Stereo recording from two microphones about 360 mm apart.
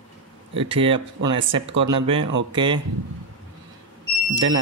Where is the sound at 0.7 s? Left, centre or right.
Centre.